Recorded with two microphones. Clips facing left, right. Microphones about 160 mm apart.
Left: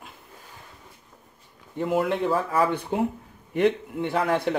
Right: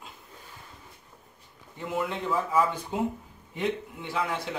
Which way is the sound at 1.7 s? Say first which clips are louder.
Left 7 dB; 55° left (ahead or behind).